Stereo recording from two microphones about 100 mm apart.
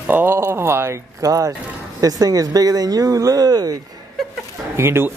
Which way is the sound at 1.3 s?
35° right (ahead or behind).